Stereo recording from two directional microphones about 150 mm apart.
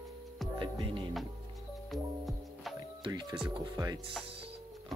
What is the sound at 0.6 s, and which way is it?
Music, 35° right (ahead or behind).